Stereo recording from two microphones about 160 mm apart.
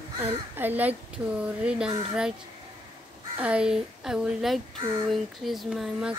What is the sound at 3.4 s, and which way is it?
Speech, 5° right (ahead or behind).